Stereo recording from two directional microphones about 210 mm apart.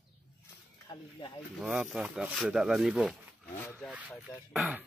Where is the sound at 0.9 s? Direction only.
20° left (ahead or behind).